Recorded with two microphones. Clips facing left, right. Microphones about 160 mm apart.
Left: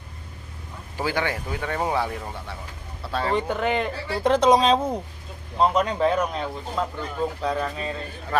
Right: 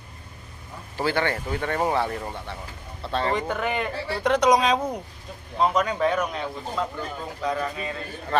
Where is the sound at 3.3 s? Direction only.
30° left (ahead or behind).